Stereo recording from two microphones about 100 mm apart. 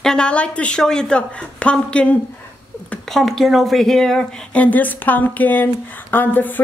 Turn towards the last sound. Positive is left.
turn(degrees=20)  # may be behind; listen again after turning